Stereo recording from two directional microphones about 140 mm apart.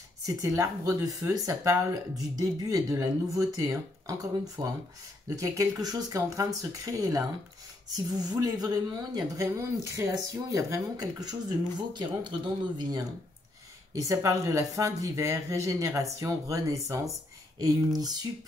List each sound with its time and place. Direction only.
0.2 s speech: 25° right (ahead or behind)
13.9 s speech: 20° right (ahead or behind)